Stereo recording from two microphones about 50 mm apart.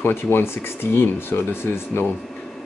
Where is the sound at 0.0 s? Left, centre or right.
Left.